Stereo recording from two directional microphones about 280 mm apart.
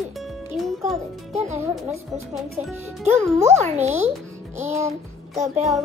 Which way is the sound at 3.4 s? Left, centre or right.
Right.